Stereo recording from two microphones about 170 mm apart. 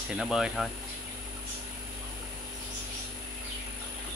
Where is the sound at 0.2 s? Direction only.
5° right (ahead or behind).